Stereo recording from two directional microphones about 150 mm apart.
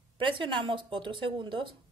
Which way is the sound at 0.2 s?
35° right (ahead or behind).